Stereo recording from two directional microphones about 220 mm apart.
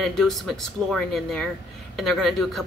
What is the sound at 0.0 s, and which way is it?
A woman's voice, centre (ahead or behind).